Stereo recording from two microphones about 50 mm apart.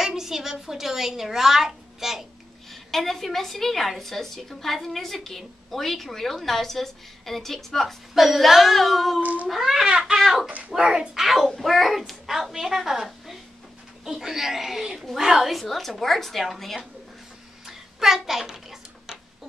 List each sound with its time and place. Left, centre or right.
0.0 s a woman's voice: centre
9.2 s speech: right
9.5 s a woman's voice: centre
9.8 s speech: centre
10.1 s a woman's voice: centre
10.8 s speech: centre
11.1 s a woman's voice: centre
17.6 s a sound: centre